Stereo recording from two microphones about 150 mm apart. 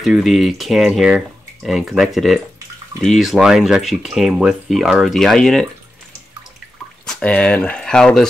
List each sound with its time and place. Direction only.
0.0 s speech: centre (ahead or behind)
7.1 s speech: 10° left (ahead or behind)